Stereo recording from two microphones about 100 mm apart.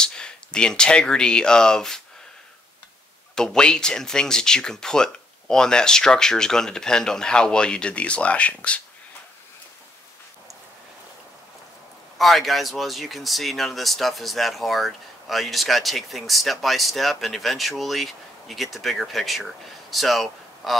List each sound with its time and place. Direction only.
0.0 s speech: 10° left (ahead or behind)
3.3 s speech: 5° left (ahead or behind)
12.2 s speech: centre (ahead or behind)